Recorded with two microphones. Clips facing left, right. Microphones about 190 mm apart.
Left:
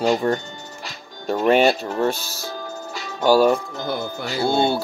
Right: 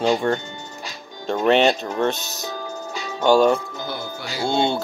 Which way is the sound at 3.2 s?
5° left (ahead or behind).